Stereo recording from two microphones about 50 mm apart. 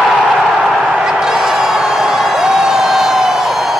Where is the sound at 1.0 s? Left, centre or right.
Centre.